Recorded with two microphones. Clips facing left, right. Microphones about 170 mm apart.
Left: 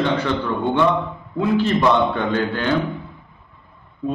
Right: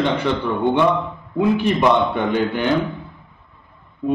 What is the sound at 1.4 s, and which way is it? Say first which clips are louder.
A man's voice: right 1 dB; 15° right (ahead or behind).